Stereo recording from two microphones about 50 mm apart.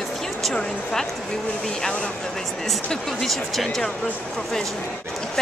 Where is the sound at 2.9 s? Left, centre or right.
Centre.